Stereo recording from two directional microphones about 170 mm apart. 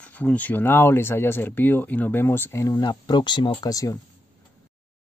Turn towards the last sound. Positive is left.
turn(degrees=20)  # may be behind; listen again after turning